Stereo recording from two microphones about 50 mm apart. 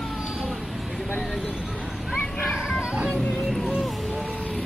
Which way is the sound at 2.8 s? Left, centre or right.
Centre.